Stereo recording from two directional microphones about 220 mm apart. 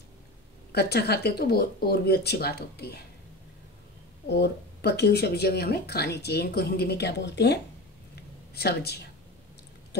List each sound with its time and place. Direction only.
0.7 s speech: 45° left (ahead or behind)
4.3 s speech: 50° left (ahead or behind)